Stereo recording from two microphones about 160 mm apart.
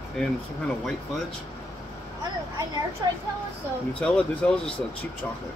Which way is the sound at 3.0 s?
25° right (ahead or behind).